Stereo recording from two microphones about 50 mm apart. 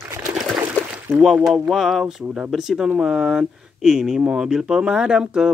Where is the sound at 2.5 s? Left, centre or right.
Centre.